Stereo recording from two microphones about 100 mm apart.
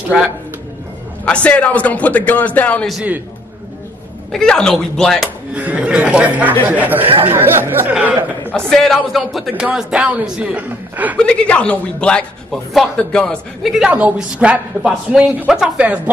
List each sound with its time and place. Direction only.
1.2 s a man's voice: 10° left (ahead or behind)
4.3 s a woman's voice: 5° left (ahead or behind)
5.5 s a woman's voice: 15° right (ahead or behind)
8.5 s a woman's voice: 5° left (ahead or behind); by 11.1 s 15° right (ahead or behind)
11.1 s a man's voice: 10° left (ahead or behind)